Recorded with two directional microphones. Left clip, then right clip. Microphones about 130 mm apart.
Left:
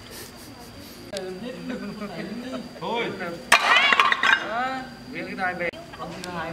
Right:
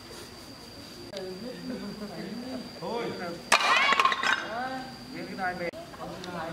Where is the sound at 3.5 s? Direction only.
5° left (ahead or behind).